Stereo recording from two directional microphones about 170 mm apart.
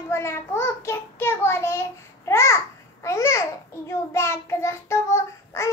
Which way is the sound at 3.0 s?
15° left (ahead or behind).